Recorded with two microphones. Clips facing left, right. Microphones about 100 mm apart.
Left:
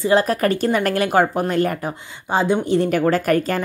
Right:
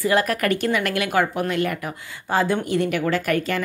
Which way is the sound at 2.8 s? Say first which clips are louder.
Left 4 dB; 40° left (ahead or behind).